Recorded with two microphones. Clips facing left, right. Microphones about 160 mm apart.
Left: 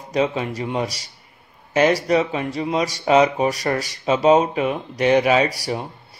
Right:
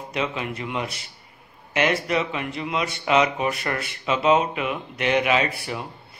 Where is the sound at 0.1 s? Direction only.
35° left (ahead or behind).